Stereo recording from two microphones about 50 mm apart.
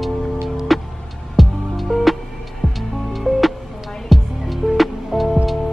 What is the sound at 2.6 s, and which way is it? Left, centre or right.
Music, left.